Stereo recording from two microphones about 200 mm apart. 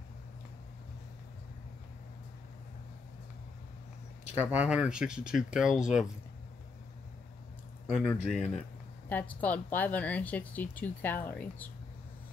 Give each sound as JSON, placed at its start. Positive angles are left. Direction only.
{"t": 4.4, "sound": "speech", "side_deg": -10}
{"t": 7.9, "sound": "speech", "side_deg": 0}